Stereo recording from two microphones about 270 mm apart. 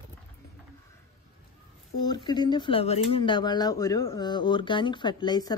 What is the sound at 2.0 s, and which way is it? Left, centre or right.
A woman's voice, centre.